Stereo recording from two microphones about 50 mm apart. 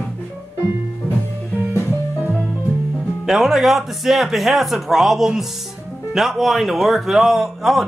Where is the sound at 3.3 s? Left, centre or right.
Centre.